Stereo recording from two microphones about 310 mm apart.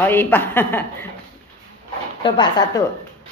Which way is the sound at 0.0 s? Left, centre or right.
Centre.